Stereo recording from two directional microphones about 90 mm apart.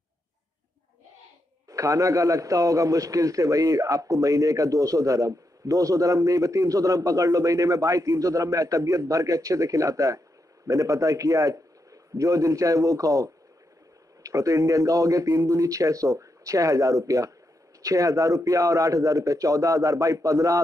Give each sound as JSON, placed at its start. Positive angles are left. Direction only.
{"t": 1.7, "sound": "a man's voice", "side_deg": -40}